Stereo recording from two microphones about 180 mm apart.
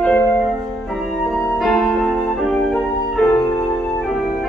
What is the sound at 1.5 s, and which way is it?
Music, centre (ahead or behind).